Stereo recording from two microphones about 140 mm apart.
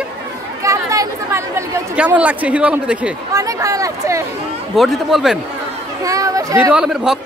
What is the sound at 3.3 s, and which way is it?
Speech, 25° right (ahead or behind).